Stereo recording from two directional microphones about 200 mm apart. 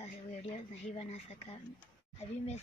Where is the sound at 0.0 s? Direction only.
35° left (ahead or behind).